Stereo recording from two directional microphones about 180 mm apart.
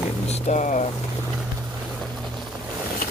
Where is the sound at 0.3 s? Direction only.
40° left (ahead or behind).